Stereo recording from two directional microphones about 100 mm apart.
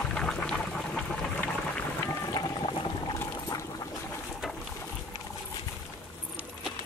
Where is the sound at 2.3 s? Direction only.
45° left (ahead or behind).